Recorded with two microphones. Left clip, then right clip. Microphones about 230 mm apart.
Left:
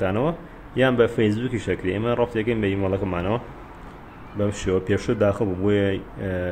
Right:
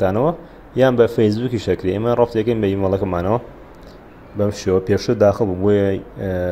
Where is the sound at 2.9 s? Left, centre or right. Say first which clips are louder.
Right 6 dB; centre.